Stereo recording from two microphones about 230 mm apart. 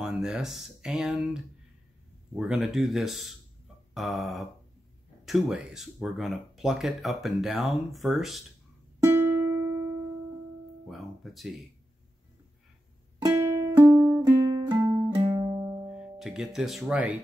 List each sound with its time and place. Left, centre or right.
0.0 s speech: centre
9.0 s music: centre
10.9 s speech: centre
13.2 s music: centre
15.6 s music: centre